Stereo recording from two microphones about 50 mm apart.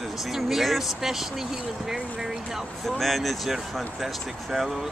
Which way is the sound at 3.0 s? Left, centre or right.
Centre.